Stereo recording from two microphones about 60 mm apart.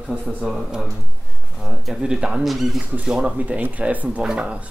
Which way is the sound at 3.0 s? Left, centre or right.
Centre.